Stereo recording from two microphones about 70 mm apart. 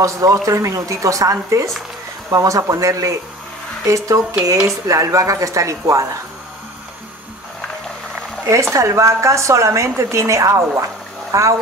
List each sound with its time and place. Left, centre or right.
0.0 s speech: right
8.5 s speech: right